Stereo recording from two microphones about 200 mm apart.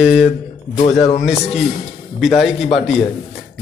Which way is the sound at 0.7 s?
35° left (ahead or behind).